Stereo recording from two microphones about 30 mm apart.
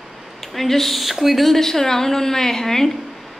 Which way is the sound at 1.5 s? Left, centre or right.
Centre.